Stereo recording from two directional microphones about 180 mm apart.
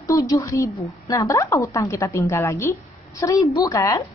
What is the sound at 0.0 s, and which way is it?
A woman's voice, 20° left (ahead or behind).